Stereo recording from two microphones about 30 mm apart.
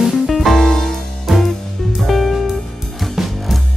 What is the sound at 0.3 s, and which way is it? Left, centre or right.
Music, centre.